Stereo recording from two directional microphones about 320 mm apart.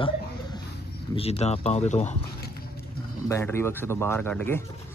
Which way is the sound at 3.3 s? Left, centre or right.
Centre.